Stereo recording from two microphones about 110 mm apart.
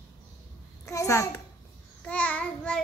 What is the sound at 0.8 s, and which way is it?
Speech, 30° left (ahead or behind).